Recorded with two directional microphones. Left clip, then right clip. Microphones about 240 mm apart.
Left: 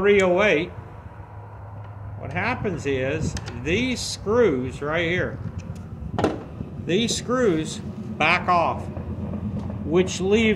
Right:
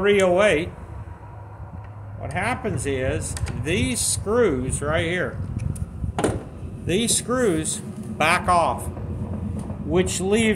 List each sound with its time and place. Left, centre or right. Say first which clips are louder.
0.0 s speech: right 1 dB; centre
2.3 s speech: even; centre
5.6 s a sound: right 3 dB; centre
6.9 s speech: even; centre